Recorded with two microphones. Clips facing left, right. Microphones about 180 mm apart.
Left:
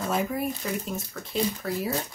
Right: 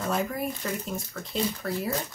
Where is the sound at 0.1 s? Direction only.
5° left (ahead or behind).